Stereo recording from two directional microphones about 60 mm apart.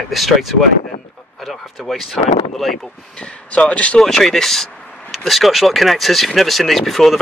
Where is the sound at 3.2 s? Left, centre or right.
Centre.